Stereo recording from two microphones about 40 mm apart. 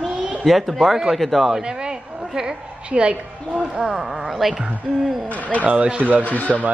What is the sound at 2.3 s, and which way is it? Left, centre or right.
Speech, right.